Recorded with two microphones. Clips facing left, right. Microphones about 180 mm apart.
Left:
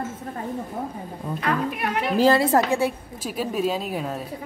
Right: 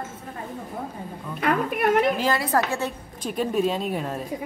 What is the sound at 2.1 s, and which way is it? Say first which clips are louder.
Speech: left 5 dB; 30° left (ahead or behind).